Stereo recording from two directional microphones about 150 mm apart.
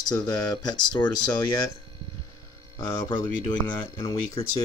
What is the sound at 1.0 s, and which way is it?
Speech, 20° left (ahead or behind).